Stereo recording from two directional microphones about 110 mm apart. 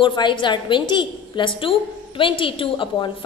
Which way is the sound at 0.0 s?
45° left (ahead or behind).